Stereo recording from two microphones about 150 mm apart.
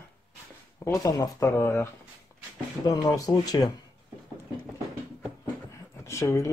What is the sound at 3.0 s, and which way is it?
Speech, 25° left (ahead or behind).